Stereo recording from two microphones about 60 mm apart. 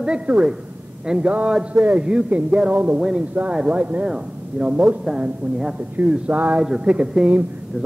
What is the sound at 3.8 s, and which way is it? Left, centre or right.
A man's voice, right.